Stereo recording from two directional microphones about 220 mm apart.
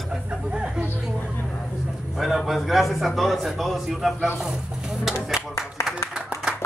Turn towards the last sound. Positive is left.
turn(degrees=-5)  # may be behind; listen again after turning